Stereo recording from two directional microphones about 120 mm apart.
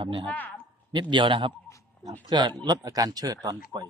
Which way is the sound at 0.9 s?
40° right (ahead or behind).